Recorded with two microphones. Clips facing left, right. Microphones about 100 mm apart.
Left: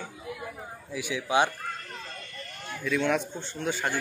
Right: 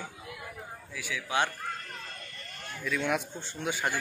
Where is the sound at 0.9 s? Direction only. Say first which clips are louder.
Left 5 dB; 20° left (ahead or behind).